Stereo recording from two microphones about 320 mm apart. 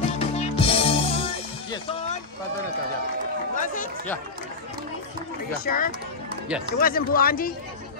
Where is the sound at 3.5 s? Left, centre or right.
Left.